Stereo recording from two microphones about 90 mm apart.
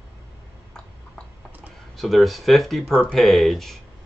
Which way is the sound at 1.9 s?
Centre (ahead or behind).